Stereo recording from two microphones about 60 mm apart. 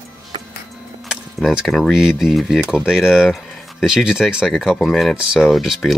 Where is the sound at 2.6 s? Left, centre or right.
Centre.